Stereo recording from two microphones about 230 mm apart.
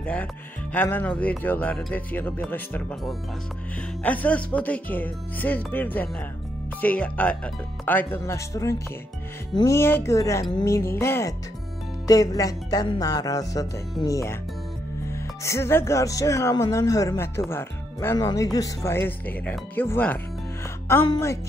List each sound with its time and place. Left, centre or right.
0.0 s speech: centre